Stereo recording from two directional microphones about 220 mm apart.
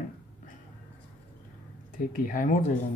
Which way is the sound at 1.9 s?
40° left (ahead or behind).